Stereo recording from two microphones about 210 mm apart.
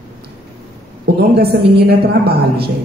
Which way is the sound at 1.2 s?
50° right (ahead or behind).